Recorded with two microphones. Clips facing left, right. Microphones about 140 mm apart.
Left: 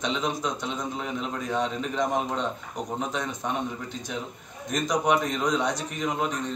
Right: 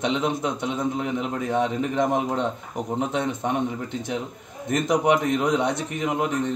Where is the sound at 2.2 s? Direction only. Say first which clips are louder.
Right 3 dB; 20° right (ahead or behind).